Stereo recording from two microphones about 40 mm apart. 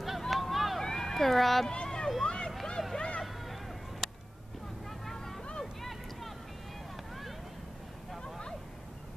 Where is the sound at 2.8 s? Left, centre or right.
Centre.